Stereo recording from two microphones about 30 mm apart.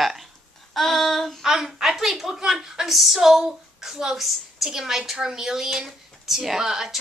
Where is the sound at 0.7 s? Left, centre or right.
Centre.